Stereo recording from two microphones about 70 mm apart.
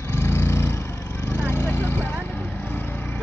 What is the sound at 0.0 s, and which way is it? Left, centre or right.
Vehicle, left.